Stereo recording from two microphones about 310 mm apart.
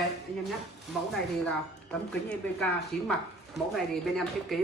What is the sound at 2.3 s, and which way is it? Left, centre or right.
Speech, centre.